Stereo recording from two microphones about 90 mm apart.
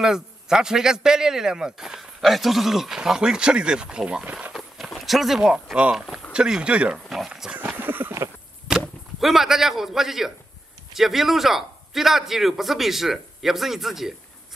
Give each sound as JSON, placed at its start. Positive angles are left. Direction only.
{"t": 0.0, "sound": "a man's voice", "side_deg": -5}
{"t": 4.6, "sound": "speech", "side_deg": 0}
{"t": 7.5, "sound": "a sound", "side_deg": -20}
{"t": 9.2, "sound": "a man's voice", "side_deg": -5}